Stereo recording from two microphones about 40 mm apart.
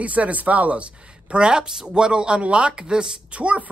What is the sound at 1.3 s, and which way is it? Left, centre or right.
Speech, right.